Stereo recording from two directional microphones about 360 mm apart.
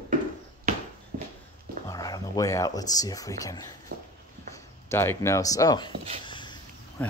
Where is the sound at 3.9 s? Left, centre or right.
Right.